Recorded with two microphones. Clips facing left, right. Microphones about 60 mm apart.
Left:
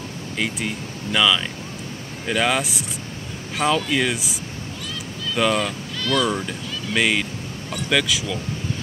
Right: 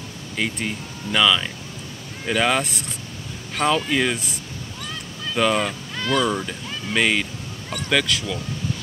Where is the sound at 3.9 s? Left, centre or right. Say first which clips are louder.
Even; centre.